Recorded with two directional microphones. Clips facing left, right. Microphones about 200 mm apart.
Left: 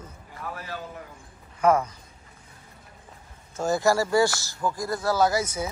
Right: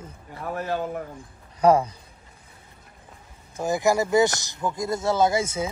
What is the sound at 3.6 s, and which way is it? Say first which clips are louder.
Speech: right 1 dB; 15° right (ahead or behind).